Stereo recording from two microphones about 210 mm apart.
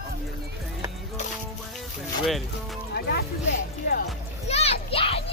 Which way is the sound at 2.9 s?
45° left (ahead or behind).